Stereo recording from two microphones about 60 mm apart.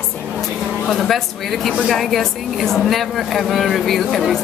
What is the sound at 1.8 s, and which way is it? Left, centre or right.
Speech, centre.